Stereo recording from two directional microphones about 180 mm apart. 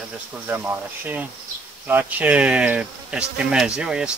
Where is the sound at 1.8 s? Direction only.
10° right (ahead or behind).